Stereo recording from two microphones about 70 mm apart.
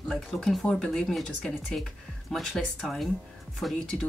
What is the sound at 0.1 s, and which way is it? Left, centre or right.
Speech, centre.